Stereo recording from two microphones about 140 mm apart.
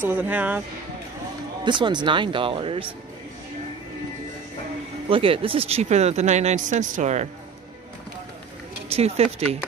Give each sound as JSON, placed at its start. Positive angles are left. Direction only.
{"t": 0.0, "sound": "speech", "side_deg": -15}
{"t": 1.6, "sound": "speech", "side_deg": -35}
{"t": 5.1, "sound": "speech", "side_deg": -40}
{"t": 8.9, "sound": "speech", "side_deg": -45}